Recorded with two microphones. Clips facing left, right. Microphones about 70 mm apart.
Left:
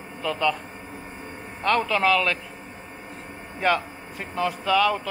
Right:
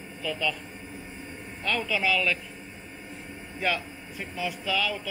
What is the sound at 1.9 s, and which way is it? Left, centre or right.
Speech, centre.